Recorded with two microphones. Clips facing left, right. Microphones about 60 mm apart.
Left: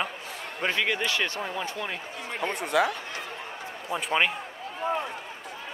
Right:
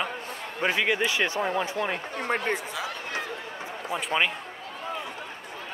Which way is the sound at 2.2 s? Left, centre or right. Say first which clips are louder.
Right 4 dB; right.